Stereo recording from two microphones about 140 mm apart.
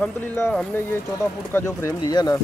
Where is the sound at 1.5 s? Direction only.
20° left (ahead or behind).